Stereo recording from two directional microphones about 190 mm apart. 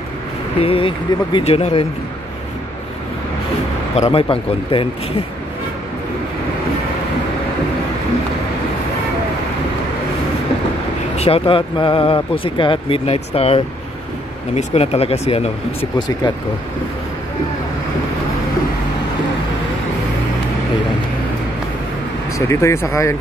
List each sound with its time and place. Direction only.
0.6 s speech: 30° left (ahead or behind)
3.9 s speech: 30° left (ahead or behind)
11.1 s speech: 30° left (ahead or behind)
22.5 s speech: 15° left (ahead or behind)